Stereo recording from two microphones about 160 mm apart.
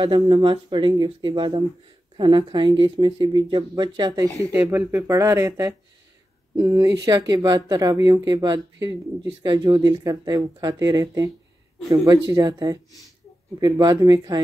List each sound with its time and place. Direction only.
0.0 s speech: 30° right (ahead or behind)